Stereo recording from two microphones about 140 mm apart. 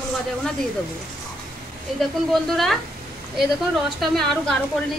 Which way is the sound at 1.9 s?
Centre (ahead or behind).